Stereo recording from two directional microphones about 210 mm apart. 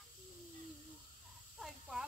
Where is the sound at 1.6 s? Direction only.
5° right (ahead or behind).